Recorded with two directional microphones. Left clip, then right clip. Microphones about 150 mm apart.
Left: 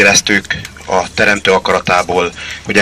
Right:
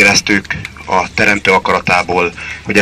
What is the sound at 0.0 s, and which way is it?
A man's voice, 15° left (ahead or behind).